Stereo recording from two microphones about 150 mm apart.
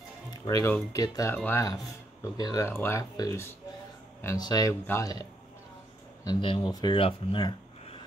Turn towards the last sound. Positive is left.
turn(degrees=35)  # may be behind; listen again after turning